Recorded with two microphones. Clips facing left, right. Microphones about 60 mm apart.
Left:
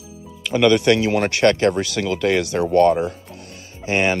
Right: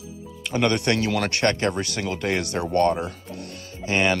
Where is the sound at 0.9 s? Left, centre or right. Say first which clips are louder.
Left 5 dB; left.